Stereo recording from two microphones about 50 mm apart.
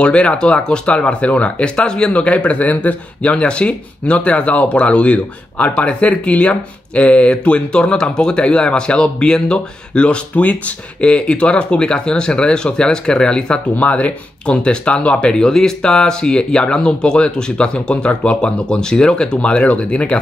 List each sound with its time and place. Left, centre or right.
0.0 s speech: left